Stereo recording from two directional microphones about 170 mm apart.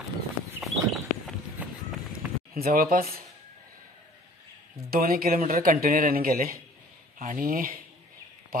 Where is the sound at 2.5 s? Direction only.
60° right (ahead or behind).